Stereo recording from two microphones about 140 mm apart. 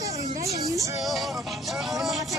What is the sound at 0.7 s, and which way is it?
Speech, 25° right (ahead or behind).